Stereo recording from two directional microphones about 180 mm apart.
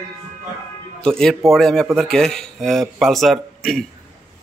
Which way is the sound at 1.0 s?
5° left (ahead or behind).